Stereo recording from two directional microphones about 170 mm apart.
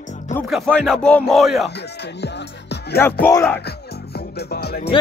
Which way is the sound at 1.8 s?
85° left.